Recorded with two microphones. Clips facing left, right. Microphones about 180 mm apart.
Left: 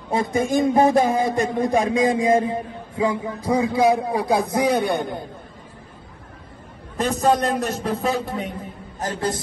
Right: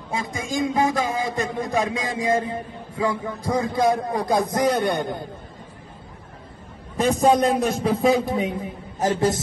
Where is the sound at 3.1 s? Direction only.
10° left (ahead or behind).